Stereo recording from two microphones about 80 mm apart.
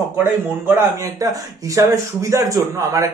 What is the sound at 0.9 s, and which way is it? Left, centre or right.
Speech, right.